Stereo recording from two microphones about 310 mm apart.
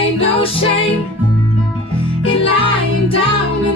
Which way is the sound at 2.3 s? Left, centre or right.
Centre.